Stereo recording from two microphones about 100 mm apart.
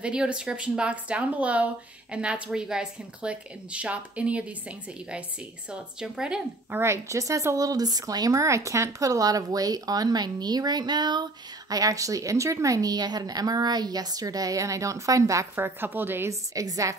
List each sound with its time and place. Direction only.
0.0 s speech: 10° right (ahead or behind)
6.7 s speech: 25° right (ahead or behind); by 11.2 s 50° right (ahead or behind)
11.7 s speech: 35° right (ahead or behind)
15.5 s speech: 20° right (ahead or behind)
16.5 s speech: 35° right (ahead or behind)